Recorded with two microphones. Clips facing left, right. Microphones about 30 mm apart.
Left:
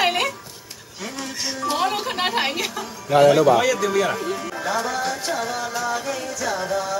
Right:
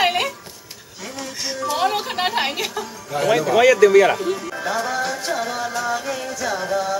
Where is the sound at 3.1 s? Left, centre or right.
Left.